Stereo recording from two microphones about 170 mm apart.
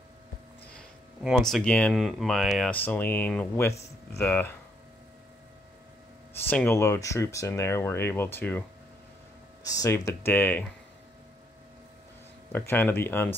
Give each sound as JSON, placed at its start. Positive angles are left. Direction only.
{"t": 1.2, "sound": "speech", "side_deg": 0}
{"t": 6.5, "sound": "speech", "side_deg": 10}
{"t": 9.7, "sound": "speech", "side_deg": 20}
{"t": 12.5, "sound": "speech", "side_deg": 10}